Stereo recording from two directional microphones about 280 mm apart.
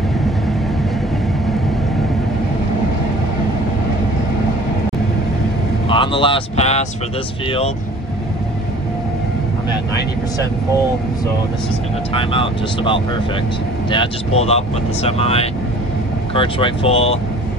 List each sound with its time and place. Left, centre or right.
5.9 s speech: centre
12.1 s speech: centre